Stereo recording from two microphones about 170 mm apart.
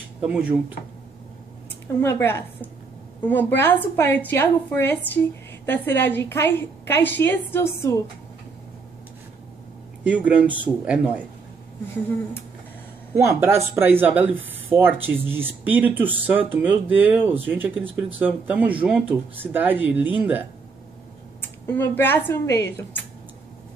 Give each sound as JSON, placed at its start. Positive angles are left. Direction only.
{"t": 0.2, "sound": "speech", "side_deg": -5}
{"t": 2.0, "sound": "a woman's voice", "side_deg": 15}
{"t": 10.0, "sound": "speech", "side_deg": -10}
{"t": 13.2, "sound": "speech", "side_deg": -15}
{"t": 21.4, "sound": "speech", "side_deg": 15}